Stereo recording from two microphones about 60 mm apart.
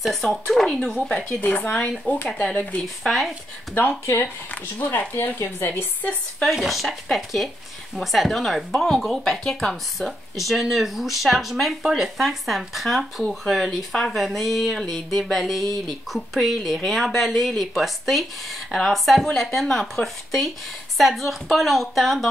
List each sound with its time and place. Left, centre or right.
0.0 s speech: centre
1.7 s a woman's voice: centre
2.8 s speech: centre
4.0 s speech: left
4.7 s a woman's voice: left
5.1 s speech: left
5.7 s a woman's voice: left
6.5 s speech: centre